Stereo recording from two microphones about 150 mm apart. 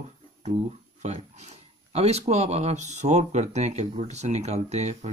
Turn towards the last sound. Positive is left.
turn(degrees=-50)  # may be behind; listen again after turning